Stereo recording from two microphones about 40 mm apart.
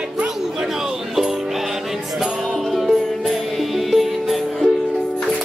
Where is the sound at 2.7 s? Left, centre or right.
Centre.